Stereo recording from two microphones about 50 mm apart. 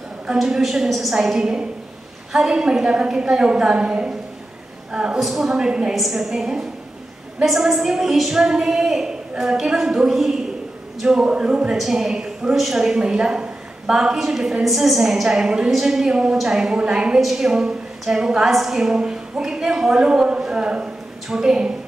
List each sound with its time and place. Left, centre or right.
0.3 s a woman's voice: centre
11.7 s a woman's voice: centre
17.2 s a woman's voice: centre